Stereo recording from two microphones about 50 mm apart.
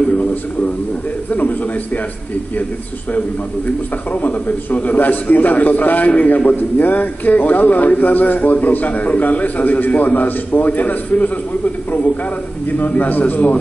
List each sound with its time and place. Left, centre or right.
0.1 s a sound: left
1.3 s a man's voice: left
4.1 s a man's voice: left